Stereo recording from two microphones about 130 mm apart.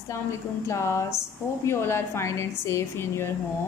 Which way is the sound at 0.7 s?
20° left (ahead or behind).